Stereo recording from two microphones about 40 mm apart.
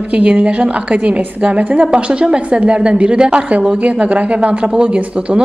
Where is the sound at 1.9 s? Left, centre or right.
Right.